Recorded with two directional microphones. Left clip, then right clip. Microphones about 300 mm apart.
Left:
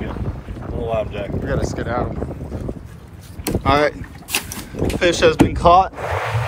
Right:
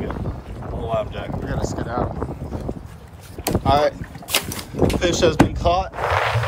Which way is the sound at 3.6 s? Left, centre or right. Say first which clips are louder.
Left 1 dB; centre.